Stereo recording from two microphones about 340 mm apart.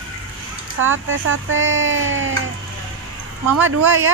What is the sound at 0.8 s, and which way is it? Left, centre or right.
Speech, right.